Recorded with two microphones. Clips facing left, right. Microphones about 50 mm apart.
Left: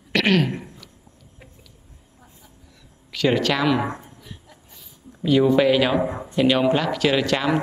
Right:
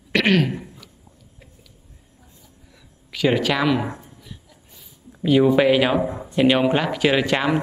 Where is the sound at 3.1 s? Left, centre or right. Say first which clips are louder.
Even; centre.